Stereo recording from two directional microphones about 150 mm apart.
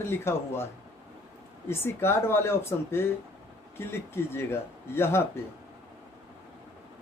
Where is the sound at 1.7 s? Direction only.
15° left (ahead or behind).